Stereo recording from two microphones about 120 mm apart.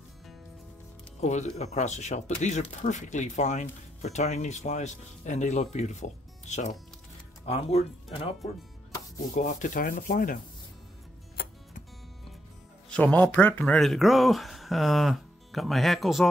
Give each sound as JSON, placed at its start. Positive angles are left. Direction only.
{"t": 1.2, "sound": "speech", "side_deg": 70}
{"t": 7.4, "sound": "speech", "side_deg": 60}
{"t": 9.3, "sound": "sanding", "side_deg": 90}
{"t": 12.9, "sound": "speech", "side_deg": 15}